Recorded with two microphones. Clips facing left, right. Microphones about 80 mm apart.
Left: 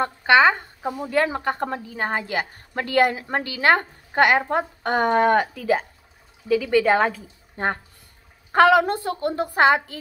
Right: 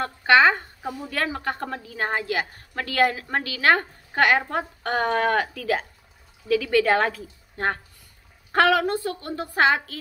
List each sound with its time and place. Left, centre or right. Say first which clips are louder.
0.0 s speech: left 1 dB; centre
1.0 s a woman's voice: left 6 dB; left
8.8 s a woman's voice: left 2 dB; left
9.5 s a woman's voice: left 2 dB; centre